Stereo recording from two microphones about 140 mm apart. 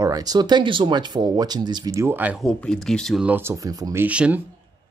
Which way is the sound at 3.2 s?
15° right (ahead or behind).